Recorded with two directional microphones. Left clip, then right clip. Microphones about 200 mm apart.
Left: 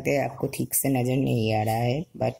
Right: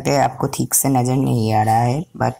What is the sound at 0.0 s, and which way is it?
Speech, 60° right (ahead or behind).